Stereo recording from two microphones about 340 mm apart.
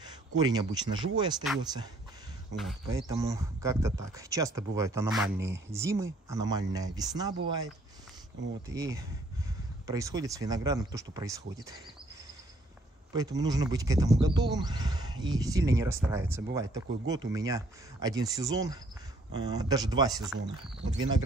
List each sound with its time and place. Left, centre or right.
0.4 s speech: centre
2.5 s speech: centre
8.6 s speech: centre
13.1 s speech: centre
20.8 s speech: right